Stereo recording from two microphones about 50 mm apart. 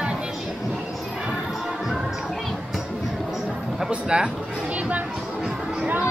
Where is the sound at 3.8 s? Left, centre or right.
Centre.